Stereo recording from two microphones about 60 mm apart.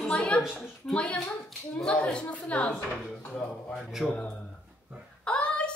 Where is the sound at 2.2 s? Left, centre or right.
Left.